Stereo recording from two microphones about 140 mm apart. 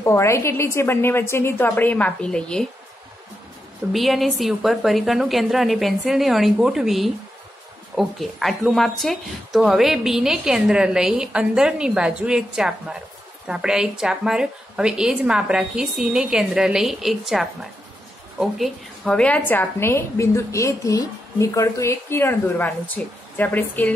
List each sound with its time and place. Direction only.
0.0 s a woman's voice: 20° left (ahead or behind)
3.9 s speech: centre (ahead or behind)
19.0 s a woman's voice: 10° left (ahead or behind)